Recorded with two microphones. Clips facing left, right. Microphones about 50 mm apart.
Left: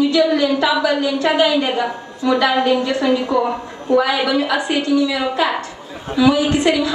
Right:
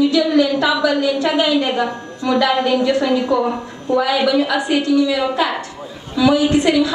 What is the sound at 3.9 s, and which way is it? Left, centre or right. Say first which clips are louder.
Speech: even; centre.